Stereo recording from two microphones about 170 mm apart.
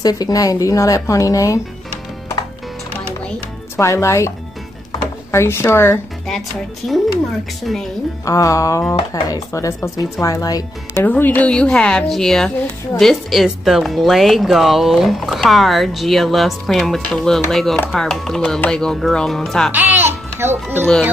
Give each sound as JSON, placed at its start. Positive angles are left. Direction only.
{"t": 0.0, "sound": "speech", "side_deg": 20}
{"t": 3.3, "sound": "music", "side_deg": 15}
{"t": 5.3, "sound": "speech", "side_deg": 15}
{"t": 6.8, "sound": "a woman's voice", "side_deg": 5}
{"t": 8.3, "sound": "speech", "side_deg": 20}
{"t": 11.1, "sound": "a woman's voice", "side_deg": 10}
{"t": 19.7, "sound": "a child's voice", "side_deg": -10}